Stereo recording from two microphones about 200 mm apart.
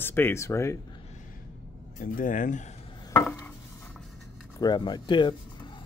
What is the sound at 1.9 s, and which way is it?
Speech, 45° left (ahead or behind).